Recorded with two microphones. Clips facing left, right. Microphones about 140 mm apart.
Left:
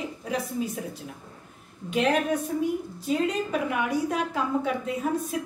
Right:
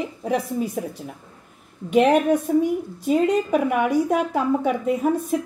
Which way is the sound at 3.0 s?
55° right (ahead or behind).